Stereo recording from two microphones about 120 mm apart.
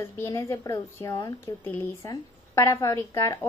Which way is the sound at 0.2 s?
25° left (ahead or behind).